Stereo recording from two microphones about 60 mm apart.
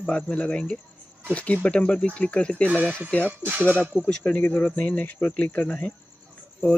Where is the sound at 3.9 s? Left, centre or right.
Centre.